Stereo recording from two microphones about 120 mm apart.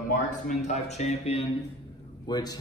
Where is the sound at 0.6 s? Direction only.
80° left; by 1.5 s 60° left (ahead or behind).